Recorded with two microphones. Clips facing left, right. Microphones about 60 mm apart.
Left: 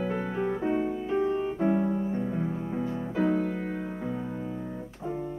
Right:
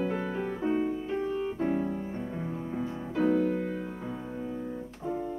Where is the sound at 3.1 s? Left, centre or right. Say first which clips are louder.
Right 1 dB; left.